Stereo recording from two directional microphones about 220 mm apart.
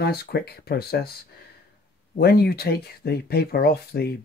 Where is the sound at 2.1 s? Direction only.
45° left (ahead or behind).